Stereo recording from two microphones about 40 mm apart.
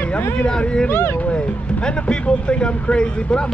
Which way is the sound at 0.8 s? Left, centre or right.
Left.